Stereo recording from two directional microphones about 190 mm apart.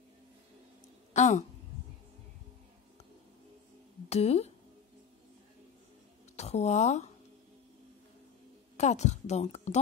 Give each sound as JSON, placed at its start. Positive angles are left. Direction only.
{"t": 1.1, "sound": "speech", "side_deg": 40}
{"t": 4.1, "sound": "a woman's voice", "side_deg": 35}
{"t": 6.3, "sound": "speech", "side_deg": 35}
{"t": 8.7, "sound": "a woman's voice", "side_deg": 35}